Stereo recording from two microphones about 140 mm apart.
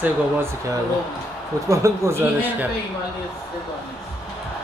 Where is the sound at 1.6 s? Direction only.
20° right (ahead or behind).